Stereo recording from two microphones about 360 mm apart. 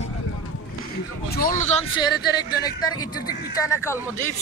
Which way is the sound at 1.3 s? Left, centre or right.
Left.